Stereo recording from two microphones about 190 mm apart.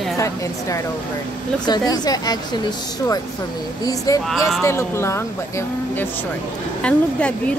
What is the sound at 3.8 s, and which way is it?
A woman's voice, 20° left (ahead or behind).